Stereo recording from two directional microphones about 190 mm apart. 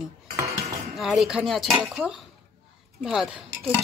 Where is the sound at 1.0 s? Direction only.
Centre (ahead or behind).